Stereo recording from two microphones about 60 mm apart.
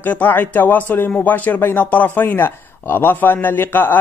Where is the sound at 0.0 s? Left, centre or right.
Left.